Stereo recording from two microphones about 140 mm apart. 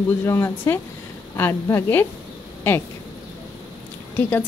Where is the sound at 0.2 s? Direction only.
20° left (ahead or behind).